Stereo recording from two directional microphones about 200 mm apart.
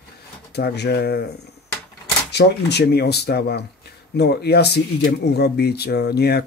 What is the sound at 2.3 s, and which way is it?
Speech, 55° left (ahead or behind).